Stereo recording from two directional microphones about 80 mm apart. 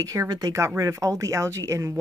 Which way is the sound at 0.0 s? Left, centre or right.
Right.